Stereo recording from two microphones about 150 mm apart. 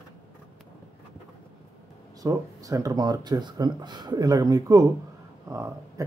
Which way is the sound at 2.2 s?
20° right (ahead or behind).